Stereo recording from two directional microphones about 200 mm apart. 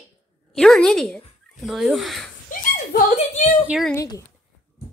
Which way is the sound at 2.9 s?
35° left (ahead or behind).